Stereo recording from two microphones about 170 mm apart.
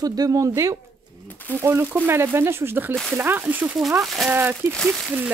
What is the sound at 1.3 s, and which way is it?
Speech, 10° left (ahead or behind).